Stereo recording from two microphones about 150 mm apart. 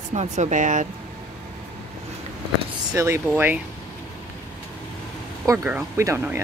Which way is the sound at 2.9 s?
15° right (ahead or behind).